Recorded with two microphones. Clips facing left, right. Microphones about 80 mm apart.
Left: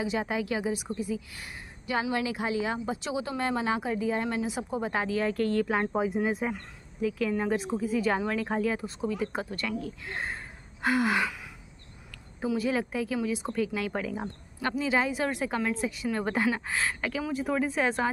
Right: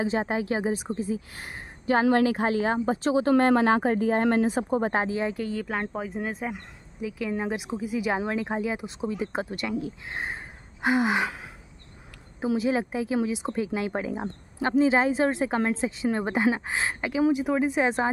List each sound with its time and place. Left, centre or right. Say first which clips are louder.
0.0 s speech: right 3 dB; right
5.0 s speech: right 1 dB; right
5.3 s speech: left 3 dB; centre
6.5 s speech: even; centre; by 11.4 s right
12.4 s speech: right 3 dB; right